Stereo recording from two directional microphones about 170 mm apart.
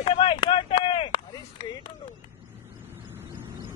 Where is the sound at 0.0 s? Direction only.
30° left (ahead or behind).